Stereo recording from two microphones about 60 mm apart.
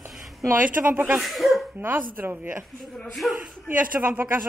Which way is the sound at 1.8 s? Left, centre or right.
Right.